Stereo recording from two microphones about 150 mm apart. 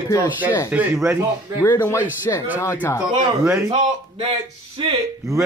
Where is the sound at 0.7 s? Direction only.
10° right (ahead or behind).